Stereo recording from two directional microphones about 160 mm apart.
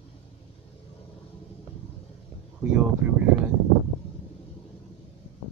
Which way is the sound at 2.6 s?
5° right (ahead or behind).